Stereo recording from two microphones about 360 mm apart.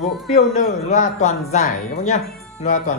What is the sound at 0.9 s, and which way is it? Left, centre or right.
Speech, centre.